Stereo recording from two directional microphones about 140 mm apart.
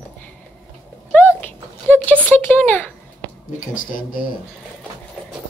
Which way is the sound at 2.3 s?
15° left (ahead or behind).